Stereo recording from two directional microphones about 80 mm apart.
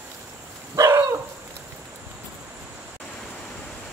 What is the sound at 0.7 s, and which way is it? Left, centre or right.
Dog, right.